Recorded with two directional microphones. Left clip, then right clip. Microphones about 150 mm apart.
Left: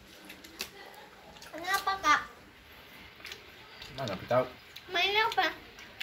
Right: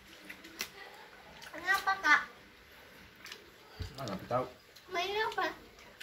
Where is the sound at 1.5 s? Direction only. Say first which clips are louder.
Left 1 dB; 10° left (ahead or behind).